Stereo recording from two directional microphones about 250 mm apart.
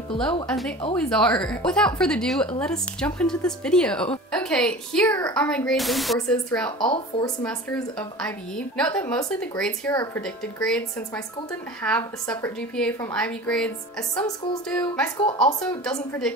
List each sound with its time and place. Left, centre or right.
0.5 s a woman's voice: centre
6.8 s speech: centre
7.4 s a woman's voice: centre